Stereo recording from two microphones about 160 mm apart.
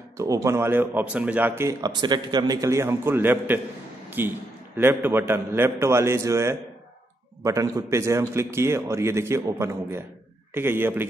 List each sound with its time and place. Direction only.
0.2 s a man's voice: 20° right (ahead or behind)